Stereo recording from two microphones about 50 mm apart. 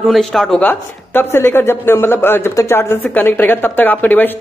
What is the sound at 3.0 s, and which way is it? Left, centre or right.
A woman's voice, left.